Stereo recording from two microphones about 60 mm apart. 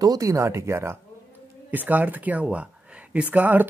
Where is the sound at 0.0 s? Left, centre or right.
Right.